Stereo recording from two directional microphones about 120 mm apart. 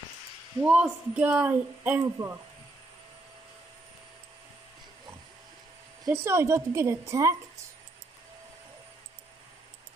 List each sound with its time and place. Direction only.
0.6 s a woman's voice: 10° right (ahead or behind)
6.0 s a woman's voice: 20° right (ahead or behind)